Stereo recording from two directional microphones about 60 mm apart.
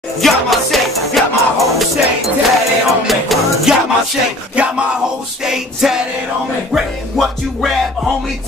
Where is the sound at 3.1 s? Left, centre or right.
Centre.